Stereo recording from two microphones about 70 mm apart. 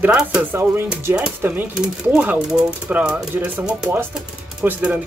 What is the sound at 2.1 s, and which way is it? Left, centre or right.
Speech, right.